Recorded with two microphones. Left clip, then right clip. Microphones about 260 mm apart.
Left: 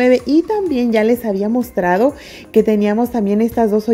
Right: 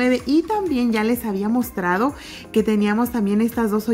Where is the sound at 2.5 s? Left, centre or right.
Centre.